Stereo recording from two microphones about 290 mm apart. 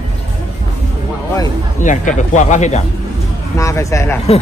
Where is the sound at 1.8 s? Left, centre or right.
Left.